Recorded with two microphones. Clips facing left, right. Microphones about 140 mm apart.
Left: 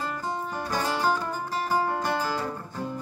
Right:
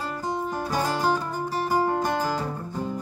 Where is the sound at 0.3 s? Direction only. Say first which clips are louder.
Right 5 dB; 10° right (ahead or behind).